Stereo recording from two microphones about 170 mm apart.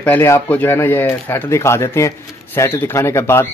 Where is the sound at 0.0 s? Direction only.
10° left (ahead or behind).